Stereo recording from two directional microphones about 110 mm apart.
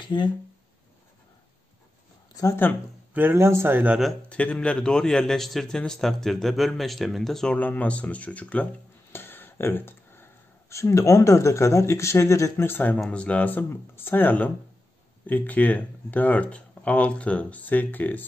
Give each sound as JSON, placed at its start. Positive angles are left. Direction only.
{"t": 0.0, "sound": "speech", "side_deg": 45}
{"t": 3.2, "sound": "speech", "side_deg": -20}
{"t": 4.3, "sound": "a man's voice", "side_deg": 10}
{"t": 7.5, "sound": "speech", "side_deg": 15}
{"t": 9.1, "sound": "a sound", "side_deg": 20}
{"t": 10.7, "sound": "speech", "side_deg": 25}
{"t": 12.9, "sound": "speech", "side_deg": 10}